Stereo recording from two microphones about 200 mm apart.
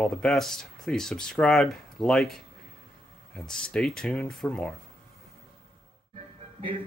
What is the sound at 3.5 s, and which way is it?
Speech, 5° left (ahead or behind).